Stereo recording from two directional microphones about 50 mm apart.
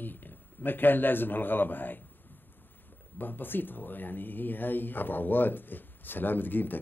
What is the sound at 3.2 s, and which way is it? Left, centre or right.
Speech, left.